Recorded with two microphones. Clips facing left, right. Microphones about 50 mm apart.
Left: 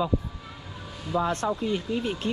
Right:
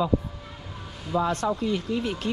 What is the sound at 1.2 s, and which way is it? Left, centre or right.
Speech, left.